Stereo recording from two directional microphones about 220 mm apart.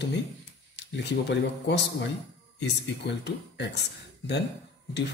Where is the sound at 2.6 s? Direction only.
50° left (ahead or behind).